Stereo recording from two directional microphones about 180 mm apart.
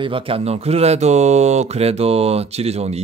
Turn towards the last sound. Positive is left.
turn(degrees=-35)  # may be behind; listen again after turning